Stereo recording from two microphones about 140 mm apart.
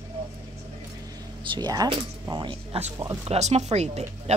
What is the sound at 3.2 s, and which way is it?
Speech, 50° right (ahead or behind).